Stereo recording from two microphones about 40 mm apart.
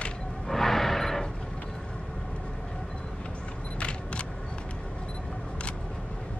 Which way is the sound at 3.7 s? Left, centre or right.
Left.